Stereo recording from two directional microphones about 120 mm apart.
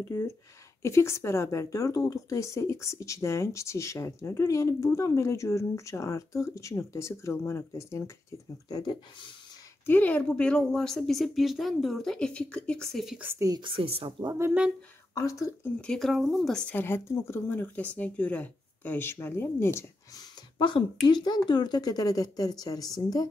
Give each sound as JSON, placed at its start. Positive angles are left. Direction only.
{"t": 0.1, "sound": "a woman's voice", "side_deg": 20}
{"t": 9.8, "sound": "a woman's voice", "side_deg": 15}
{"t": 13.2, "sound": "speech", "side_deg": -20}
{"t": 13.5, "sound": "a woman's voice", "side_deg": -45}
{"t": 15.1, "sound": "a woman's voice", "side_deg": 25}
{"t": 15.9, "sound": "a woman's voice", "side_deg": 0}
{"t": 20.5, "sound": "speech", "side_deg": 40}